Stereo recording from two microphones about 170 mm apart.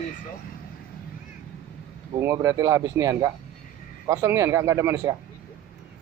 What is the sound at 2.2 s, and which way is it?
Speech, 15° right (ahead or behind).